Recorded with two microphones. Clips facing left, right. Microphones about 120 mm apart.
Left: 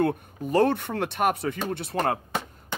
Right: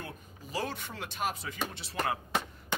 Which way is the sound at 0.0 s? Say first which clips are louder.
Left 19 dB; 60° left (ahead or behind).